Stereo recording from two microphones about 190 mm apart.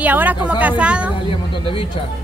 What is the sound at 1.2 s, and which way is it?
Music, 25° left (ahead or behind).